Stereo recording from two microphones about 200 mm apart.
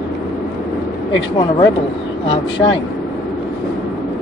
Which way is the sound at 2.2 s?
25° left (ahead or behind).